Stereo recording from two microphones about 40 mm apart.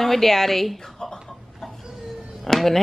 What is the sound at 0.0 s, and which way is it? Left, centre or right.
A woman's voice, centre.